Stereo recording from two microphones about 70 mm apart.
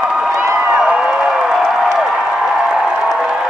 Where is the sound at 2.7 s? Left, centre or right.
Centre.